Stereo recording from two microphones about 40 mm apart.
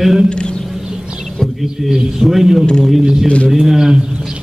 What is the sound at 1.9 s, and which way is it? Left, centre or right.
A man's voice, centre.